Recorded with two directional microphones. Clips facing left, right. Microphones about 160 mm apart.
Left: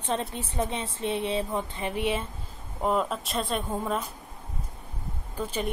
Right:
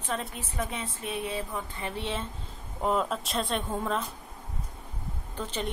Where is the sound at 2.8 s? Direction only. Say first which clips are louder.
Left 1 dB; centre (ahead or behind).